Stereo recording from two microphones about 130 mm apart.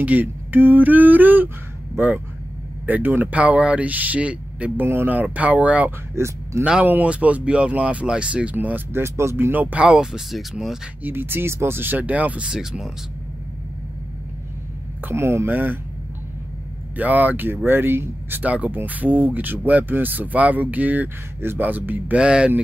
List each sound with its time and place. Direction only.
0.0 s speech: 15° right (ahead or behind)
11.1 s speech: 15° right (ahead or behind)
15.0 s speech: 20° right (ahead or behind)
16.9 s speech: 10° right (ahead or behind)